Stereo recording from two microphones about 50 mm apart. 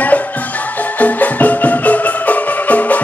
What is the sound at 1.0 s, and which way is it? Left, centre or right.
Music, left.